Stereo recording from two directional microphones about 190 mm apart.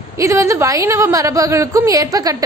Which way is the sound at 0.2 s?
15° right (ahead or behind).